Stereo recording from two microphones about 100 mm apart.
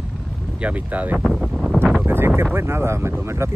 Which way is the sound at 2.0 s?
25° right (ahead or behind).